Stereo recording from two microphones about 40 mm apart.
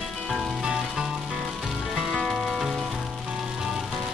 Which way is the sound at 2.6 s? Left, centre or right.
Centre.